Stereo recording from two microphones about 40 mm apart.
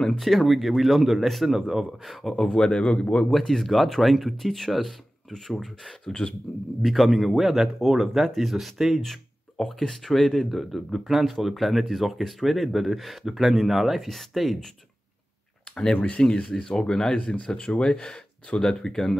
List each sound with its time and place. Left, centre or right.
0.2 s speech: centre
2.0 s speech: centre; by 3.3 s left
3.3 s speech: centre
6.0 s speech: centre
6.8 s speech: centre
15.7 s speech: left